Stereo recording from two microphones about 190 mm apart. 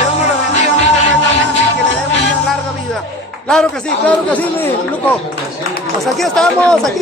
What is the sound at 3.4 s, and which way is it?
Speech, 5° left (ahead or behind).